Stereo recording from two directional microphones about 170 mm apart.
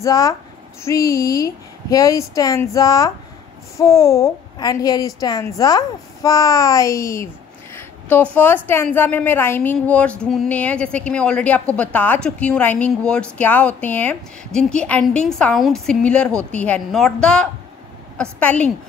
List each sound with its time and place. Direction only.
0.0 s a woman's voice: 20° left (ahead or behind)
7.7 s a sound: 10° left (ahead or behind)
8.6 s a woman's voice: 10° left (ahead or behind)